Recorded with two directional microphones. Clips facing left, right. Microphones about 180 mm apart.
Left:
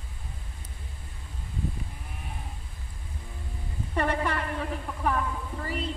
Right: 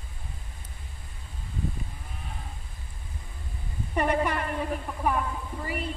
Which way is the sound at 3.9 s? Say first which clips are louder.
Right 2 dB; 15° right (ahead or behind).